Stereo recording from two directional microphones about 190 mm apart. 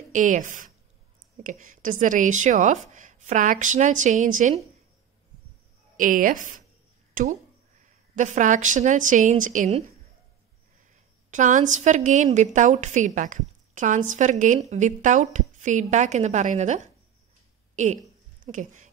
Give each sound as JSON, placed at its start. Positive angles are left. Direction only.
{"t": 0.1, "sound": "a woman's voice", "side_deg": -40}
{"t": 5.9, "sound": "a woman's voice", "side_deg": -45}
{"t": 11.2, "sound": "a woman's voice", "side_deg": -40}
{"t": 18.4, "sound": "speech", "side_deg": -40}